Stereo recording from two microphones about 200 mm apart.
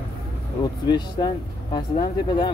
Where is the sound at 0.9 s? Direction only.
20° left (ahead or behind).